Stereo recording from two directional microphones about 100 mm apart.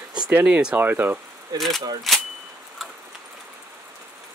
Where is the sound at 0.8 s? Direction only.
20° right (ahead or behind).